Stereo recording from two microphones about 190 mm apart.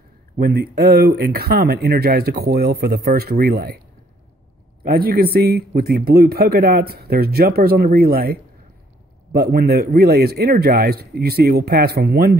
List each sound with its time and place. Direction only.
0.4 s a man's voice: 55° right (ahead or behind)
4.8 s a man's voice: 55° right (ahead or behind)